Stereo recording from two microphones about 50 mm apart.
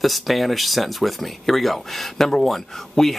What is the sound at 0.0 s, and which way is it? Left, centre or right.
Speech, centre.